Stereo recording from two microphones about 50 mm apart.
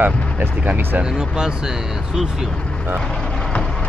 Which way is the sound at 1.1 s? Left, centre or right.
Centre.